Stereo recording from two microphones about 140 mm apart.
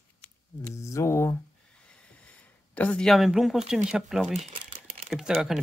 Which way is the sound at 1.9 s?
10° left (ahead or behind).